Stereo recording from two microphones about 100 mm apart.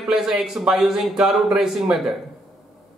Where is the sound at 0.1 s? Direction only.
5° right (ahead or behind).